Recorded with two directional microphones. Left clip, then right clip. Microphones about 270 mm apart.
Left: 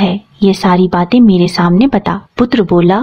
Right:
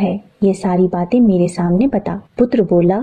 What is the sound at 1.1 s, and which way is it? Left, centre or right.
Speech, centre.